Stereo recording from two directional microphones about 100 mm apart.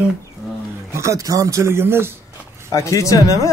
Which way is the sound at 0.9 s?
30° right (ahead or behind).